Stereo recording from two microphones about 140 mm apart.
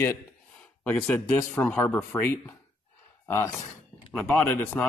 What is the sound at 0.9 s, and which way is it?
Speech, 10° left (ahead or behind).